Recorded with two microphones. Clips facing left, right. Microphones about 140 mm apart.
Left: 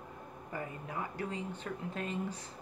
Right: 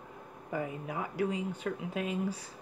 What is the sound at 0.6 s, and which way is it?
Speech, 10° right (ahead or behind).